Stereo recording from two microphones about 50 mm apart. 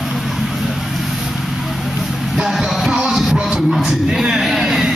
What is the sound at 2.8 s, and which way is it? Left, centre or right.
Music, centre.